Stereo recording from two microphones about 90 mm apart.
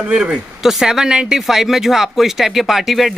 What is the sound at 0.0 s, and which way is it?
Speech, 10° right (ahead or behind).